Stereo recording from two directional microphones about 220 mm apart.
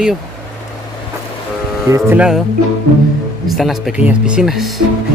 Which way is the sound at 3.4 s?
Centre (ahead or behind).